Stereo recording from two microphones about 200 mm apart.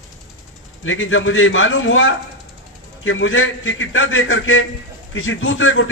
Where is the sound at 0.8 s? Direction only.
80° left.